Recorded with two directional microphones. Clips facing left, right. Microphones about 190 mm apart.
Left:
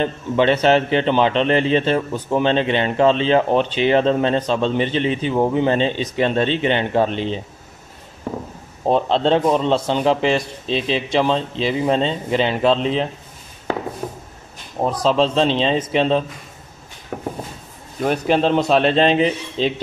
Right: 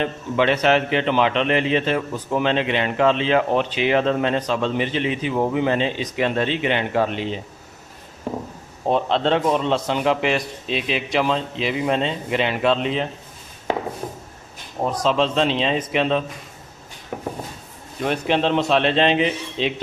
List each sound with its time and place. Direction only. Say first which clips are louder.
0.0 s a man's voice: left 3 dB; 30° left (ahead or behind)
8.8 s a man's voice: left 3 dB; 35° left (ahead or behind)
14.9 s a man's voice: left 3 dB; 35° left (ahead or behind)
18.0 s a man's voice: left 3 dB; 40° left (ahead or behind)